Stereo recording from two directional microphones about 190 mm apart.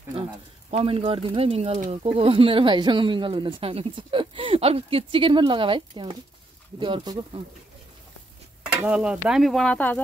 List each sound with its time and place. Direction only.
0.1 s speech: 30° right (ahead or behind)
8.8 s speech: 5° right (ahead or behind); by 10.0 s 10° left (ahead or behind)